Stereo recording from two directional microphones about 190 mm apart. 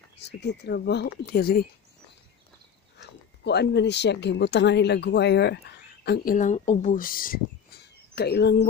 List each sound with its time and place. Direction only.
0.2 s a woman's voice: 60° left (ahead or behind)
3.0 s a woman's voice: 60° left (ahead or behind)
8.1 s speech: 60° left (ahead or behind)